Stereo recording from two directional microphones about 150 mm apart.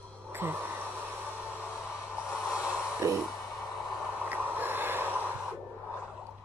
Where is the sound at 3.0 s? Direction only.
25° right (ahead or behind).